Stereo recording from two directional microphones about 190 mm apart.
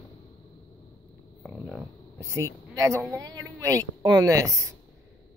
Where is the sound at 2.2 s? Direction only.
15° right (ahead or behind).